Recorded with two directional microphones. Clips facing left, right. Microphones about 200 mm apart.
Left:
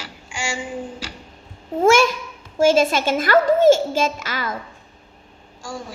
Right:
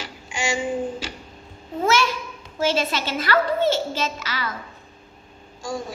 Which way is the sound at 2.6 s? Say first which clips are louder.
Left 7 dB; 45° left (ahead or behind).